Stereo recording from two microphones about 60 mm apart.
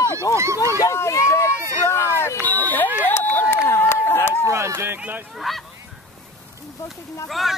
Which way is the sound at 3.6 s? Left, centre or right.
Left.